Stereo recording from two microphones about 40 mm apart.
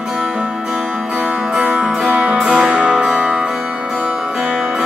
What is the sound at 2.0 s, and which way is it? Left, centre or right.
Music, right.